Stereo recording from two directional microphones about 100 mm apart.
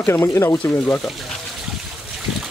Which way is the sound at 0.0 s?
25° left (ahead or behind).